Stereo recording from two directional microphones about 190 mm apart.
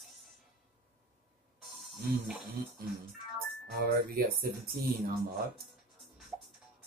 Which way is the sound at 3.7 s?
55° right (ahead or behind).